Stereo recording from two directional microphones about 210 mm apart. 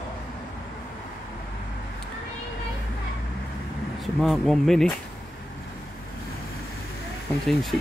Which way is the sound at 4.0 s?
Centre (ahead or behind).